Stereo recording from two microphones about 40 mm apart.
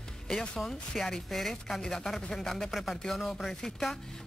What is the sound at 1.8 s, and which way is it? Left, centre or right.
Speech, centre.